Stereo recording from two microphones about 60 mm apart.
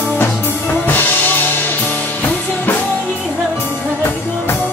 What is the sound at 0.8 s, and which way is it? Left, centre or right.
Music, left.